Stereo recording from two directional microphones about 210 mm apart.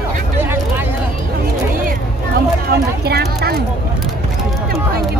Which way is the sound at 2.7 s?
50° right (ahead or behind).